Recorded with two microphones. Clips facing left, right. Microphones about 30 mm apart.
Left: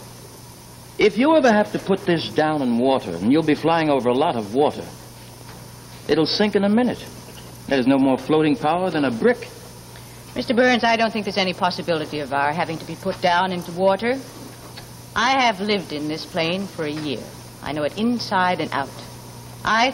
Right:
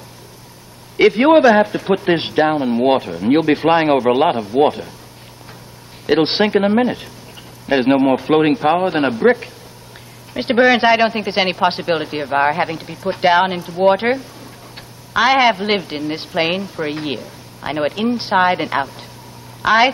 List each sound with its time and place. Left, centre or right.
0.9 s a man's voice: right
6.0 s a man's voice: right